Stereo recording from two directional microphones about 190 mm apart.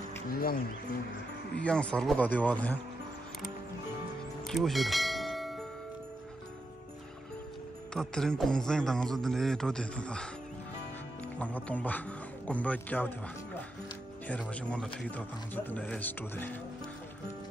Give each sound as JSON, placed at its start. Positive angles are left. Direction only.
{"t": 0.3, "sound": "speech", "side_deg": 50}
{"t": 1.5, "sound": "speech", "side_deg": 5}
{"t": 4.5, "sound": "church bell", "side_deg": 0}
{"t": 7.9, "sound": "a man's voice", "side_deg": 5}
{"t": 11.3, "sound": "speech", "side_deg": 5}
{"t": 14.5, "sound": "speech", "side_deg": 5}